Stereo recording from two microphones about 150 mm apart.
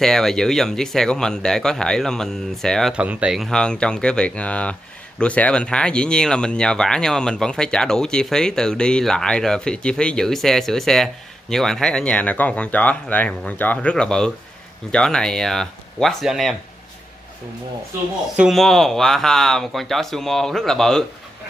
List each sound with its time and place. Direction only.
0.0 s speech: 5° left (ahead or behind)
18.3 s speech: centre (ahead or behind)